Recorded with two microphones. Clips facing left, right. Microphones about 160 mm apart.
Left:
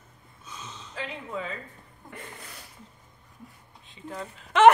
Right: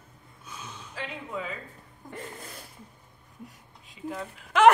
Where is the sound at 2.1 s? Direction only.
45° right (ahead or behind).